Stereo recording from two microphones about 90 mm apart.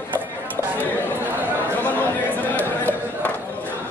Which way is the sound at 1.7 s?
20° left (ahead or behind).